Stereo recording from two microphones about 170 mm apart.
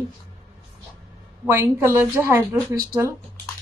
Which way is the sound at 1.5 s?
15° right (ahead or behind).